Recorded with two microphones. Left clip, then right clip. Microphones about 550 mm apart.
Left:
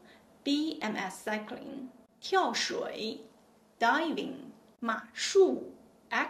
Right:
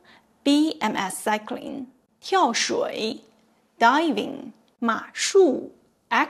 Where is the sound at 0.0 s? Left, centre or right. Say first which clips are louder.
Right 12 dB; right.